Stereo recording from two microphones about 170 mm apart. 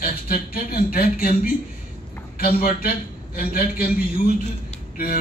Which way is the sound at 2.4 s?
60° left (ahead or behind).